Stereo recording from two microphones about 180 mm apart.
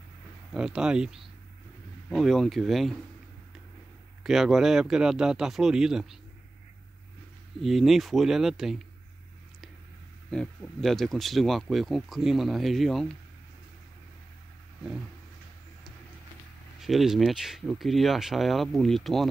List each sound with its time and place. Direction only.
0.5 s speech: 5° right (ahead or behind)
4.2 s speech: centre (ahead or behind)
7.6 s speech: centre (ahead or behind)
10.3 s speech: 5° left (ahead or behind)
16.8 s speech: centre (ahead or behind)